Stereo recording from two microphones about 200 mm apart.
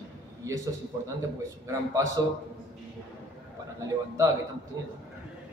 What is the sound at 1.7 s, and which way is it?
Speech, 15° right (ahead or behind).